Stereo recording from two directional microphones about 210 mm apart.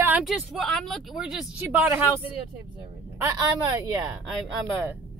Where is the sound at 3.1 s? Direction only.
15° right (ahead or behind).